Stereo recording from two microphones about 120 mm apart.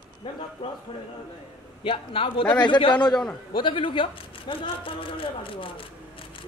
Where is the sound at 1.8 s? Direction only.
45° left (ahead or behind).